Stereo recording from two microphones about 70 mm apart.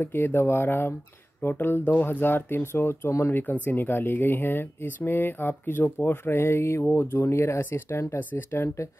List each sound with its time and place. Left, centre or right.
0.0 s speech: left
8.2 s speech: left